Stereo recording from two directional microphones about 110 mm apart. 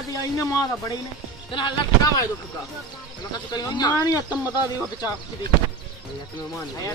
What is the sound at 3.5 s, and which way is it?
Speech, 35° left (ahead or behind).